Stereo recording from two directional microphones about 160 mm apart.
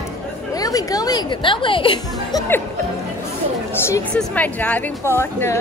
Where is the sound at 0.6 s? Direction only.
25° left (ahead or behind).